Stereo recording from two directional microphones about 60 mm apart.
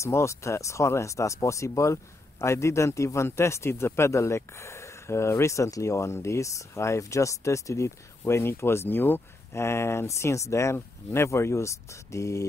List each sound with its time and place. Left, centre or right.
0.0 s speech: left
8.2 s speech: left
9.6 s speech: left